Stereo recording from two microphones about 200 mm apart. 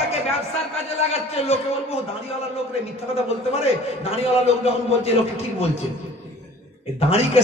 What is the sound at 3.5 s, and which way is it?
A man's voice, 30° left (ahead or behind).